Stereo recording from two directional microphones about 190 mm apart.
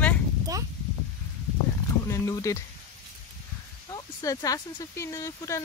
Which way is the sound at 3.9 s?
20° left (ahead or behind).